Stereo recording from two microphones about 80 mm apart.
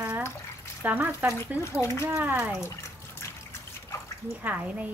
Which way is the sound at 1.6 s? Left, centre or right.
Left.